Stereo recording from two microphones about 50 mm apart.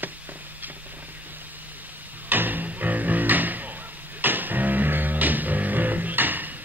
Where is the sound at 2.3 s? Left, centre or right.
Right.